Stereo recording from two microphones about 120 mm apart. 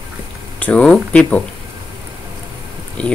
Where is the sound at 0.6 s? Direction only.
10° left (ahead or behind).